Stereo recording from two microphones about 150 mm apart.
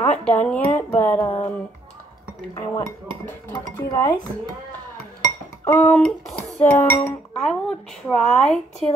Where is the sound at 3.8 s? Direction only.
25° left (ahead or behind).